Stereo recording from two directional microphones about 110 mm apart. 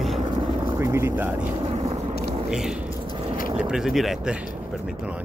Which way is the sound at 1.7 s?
75° right (ahead or behind).